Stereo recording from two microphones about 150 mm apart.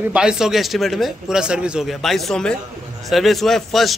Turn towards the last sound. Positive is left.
turn(degrees=0)  # may be behind; listen again after turning